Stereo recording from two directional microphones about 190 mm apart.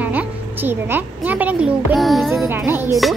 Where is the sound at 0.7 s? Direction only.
10° right (ahead or behind).